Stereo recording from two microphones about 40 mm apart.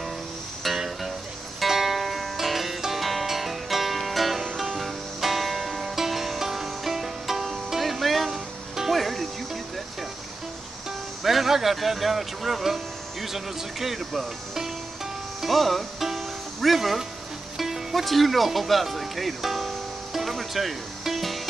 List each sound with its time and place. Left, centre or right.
0.7 s music: centre
11.2 s speech: centre
15.4 s music: centre
17.9 s music: centre